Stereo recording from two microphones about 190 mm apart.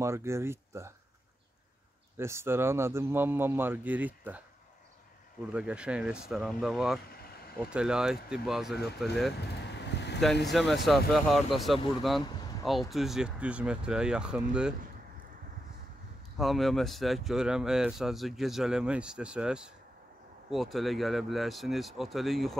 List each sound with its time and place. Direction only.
0.0 s a man's voice: 15° right (ahead or behind)
2.1 s a man's voice: 15° right (ahead or behind)
5.5 s speech: 5° right (ahead or behind)
9.5 s vehicle: 65° left (ahead or behind)
10.5 s speech: centre (ahead or behind)
16.3 s speech: centre (ahead or behind)